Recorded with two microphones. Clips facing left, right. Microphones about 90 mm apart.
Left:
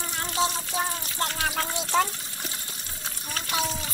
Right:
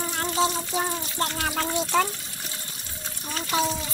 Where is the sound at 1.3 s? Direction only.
Centre (ahead or behind).